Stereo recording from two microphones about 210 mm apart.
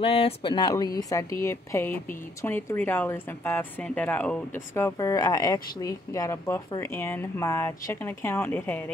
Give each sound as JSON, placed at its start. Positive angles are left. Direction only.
{"t": 0.0, "sound": "speech", "side_deg": 25}